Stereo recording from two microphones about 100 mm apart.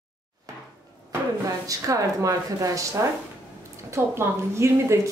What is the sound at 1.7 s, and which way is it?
A woman's voice, 35° right (ahead or behind).